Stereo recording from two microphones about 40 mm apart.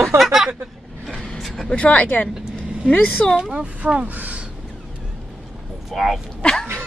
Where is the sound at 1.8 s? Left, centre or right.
Left.